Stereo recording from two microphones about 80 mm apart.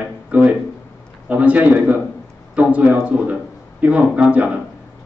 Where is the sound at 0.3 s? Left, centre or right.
Centre.